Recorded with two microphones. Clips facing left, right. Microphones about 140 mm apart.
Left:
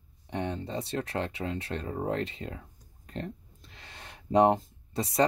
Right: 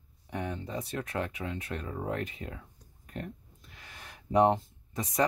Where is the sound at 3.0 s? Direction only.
30° left (ahead or behind).